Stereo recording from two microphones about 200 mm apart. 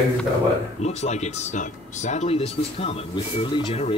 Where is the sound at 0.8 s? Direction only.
35° left (ahead or behind).